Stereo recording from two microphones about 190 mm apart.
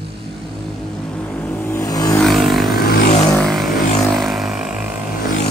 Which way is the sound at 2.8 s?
50° left (ahead or behind).